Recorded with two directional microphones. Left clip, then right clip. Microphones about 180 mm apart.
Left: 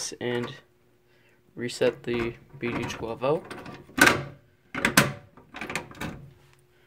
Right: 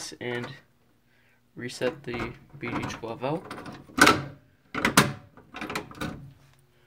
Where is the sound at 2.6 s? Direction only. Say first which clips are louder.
Left 1 dB; 40° left (ahead or behind).